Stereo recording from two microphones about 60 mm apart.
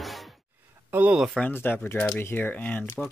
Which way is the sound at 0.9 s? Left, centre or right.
Right.